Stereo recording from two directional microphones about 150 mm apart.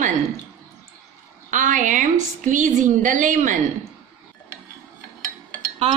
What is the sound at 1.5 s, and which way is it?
A woman's voice, 55° right (ahead or behind).